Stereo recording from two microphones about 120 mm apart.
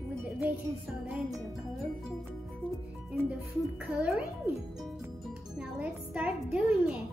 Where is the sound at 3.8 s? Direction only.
5° right (ahead or behind).